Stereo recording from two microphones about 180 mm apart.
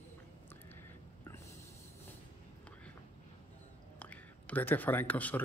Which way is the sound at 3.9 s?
10° left (ahead or behind).